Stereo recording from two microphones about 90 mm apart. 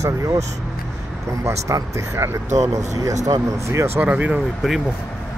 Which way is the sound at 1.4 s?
35° right (ahead or behind).